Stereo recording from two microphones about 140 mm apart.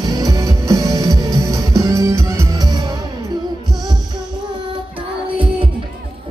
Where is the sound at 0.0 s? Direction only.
25° right (ahead or behind).